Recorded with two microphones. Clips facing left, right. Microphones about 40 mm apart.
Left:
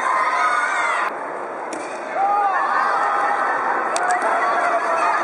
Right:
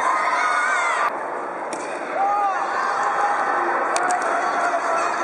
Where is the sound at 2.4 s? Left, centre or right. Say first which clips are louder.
Left 3 dB; centre.